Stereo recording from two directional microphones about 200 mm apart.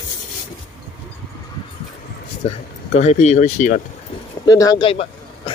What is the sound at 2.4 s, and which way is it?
Speech, 30° left (ahead or behind).